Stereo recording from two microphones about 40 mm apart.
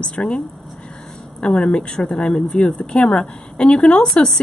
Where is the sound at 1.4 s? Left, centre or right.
Left.